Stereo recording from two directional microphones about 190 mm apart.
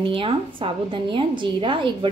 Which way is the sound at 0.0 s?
30° right (ahead or behind).